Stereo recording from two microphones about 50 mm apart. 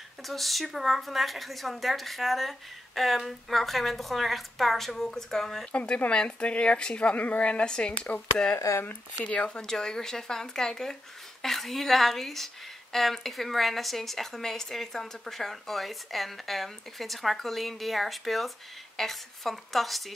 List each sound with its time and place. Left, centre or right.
0.2 s speech: centre
5.7 s speech: left
8.5 s speech: left
9.2 s speech: left
9.6 s speech: centre